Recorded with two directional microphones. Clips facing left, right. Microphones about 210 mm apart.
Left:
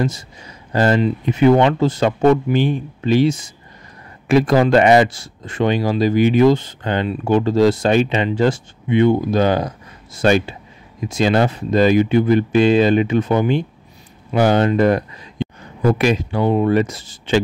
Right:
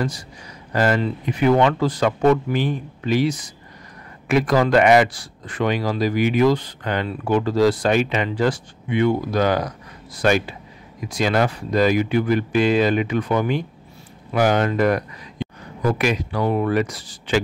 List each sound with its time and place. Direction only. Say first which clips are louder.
0.7 s speech: left 4 dB; 30° left (ahead or behind)